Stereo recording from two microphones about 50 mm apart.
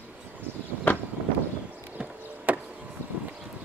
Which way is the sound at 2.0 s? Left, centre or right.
Right.